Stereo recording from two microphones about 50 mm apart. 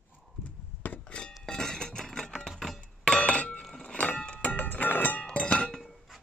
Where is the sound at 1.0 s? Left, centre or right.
Centre; by 5.2 s left.